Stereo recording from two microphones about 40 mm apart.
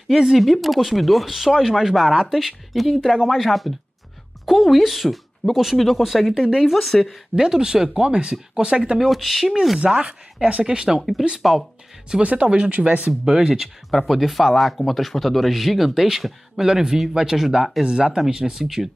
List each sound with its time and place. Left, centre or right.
0.1 s speech: centre
0.4 s speech: centre
3.4 s speech: centre
7.3 s speech: centre
9.0 s speech: centre
9.9 s speech: right
11.0 s speech: centre
12.2 s speech: right
13.2 s speech: centre
13.8 s speech: centre
17.8 s speech: right